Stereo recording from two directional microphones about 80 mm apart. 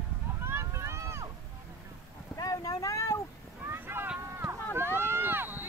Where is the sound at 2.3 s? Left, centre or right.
Left.